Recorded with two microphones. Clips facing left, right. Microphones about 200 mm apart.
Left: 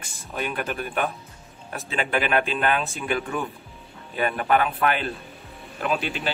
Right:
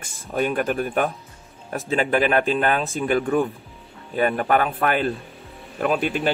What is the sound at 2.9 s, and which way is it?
A man's voice, 50° right (ahead or behind).